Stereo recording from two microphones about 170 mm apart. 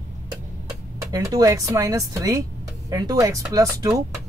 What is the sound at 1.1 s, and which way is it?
Speech, 20° right (ahead or behind).